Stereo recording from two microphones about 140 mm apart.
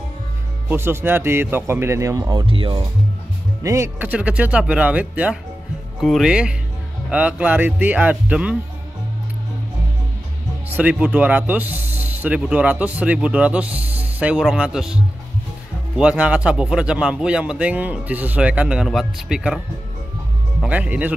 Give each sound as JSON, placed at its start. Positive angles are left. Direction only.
{"t": 0.7, "sound": "speech", "side_deg": -15}
{"t": 2.4, "sound": "speech", "side_deg": -40}
{"t": 3.6, "sound": "speech", "side_deg": -20}
{"t": 5.9, "sound": "a man's voice", "side_deg": 0}
{"t": 10.8, "sound": "speech", "side_deg": -10}
{"t": 16.0, "sound": "a man's voice", "side_deg": -10}
{"t": 20.6, "sound": "speech", "side_deg": -10}